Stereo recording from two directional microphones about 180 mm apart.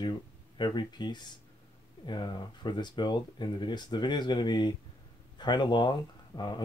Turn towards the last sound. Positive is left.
turn(degrees=25)  # may be behind; listen again after turning